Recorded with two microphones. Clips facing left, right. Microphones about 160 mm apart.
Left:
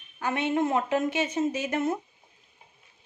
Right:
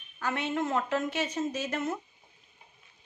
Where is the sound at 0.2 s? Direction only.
15° left (ahead or behind).